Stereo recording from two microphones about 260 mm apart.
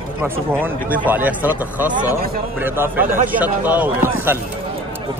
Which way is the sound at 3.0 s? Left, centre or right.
Right.